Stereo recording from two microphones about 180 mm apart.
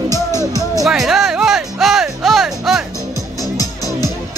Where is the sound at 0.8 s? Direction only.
Centre (ahead or behind).